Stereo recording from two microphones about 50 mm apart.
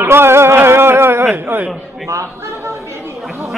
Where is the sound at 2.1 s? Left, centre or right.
Right.